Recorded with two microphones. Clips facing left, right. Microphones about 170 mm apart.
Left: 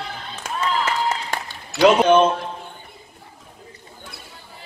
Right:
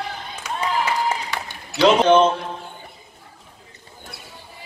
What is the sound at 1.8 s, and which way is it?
Speech, 10° left (ahead or behind).